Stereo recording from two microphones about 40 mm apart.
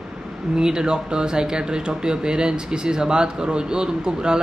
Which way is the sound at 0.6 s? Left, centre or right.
Centre.